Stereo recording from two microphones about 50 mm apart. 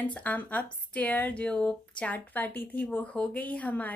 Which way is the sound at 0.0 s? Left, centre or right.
Left.